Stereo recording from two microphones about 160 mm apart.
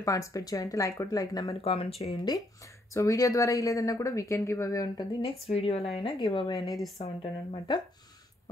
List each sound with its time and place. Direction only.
0.0 s speech: 20° left (ahead or behind)
1.5 s speech: 35° left (ahead or behind)
2.9 s speech: 20° left (ahead or behind)
5.2 s speech: 40° left (ahead or behind)
7.0 s speech: 45° left (ahead or behind)
7.5 s speech: 30° left (ahead or behind)